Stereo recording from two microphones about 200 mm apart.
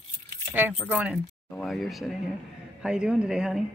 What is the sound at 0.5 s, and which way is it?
Speech, 10° right (ahead or behind).